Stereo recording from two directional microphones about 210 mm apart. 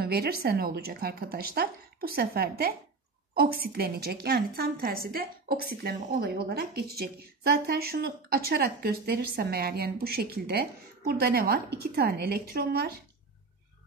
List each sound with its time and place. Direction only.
0.0 s a woman's voice: 45° right (ahead or behind)